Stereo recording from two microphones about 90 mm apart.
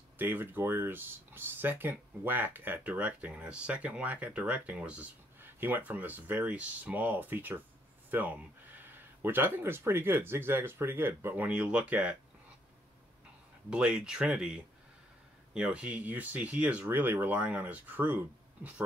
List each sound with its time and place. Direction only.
0.2 s speech: 20° right (ahead or behind)
13.7 s speech: 10° right (ahead or behind)